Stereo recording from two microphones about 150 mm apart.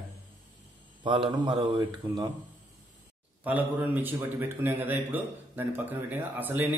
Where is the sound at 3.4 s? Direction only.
10° right (ahead or behind).